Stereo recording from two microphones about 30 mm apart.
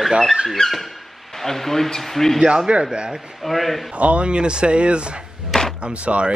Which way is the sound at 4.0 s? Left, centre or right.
Right.